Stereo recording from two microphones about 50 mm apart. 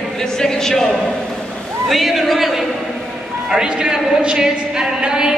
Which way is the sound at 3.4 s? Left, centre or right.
Centre.